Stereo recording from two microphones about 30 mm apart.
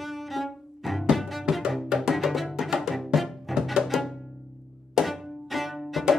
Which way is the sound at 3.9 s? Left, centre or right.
Centre.